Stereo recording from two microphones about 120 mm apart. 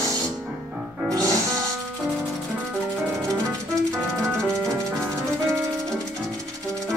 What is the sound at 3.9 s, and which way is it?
Music, 5° left (ahead or behind).